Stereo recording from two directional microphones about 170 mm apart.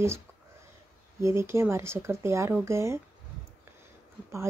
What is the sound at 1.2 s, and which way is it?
Speech, 15° right (ahead or behind).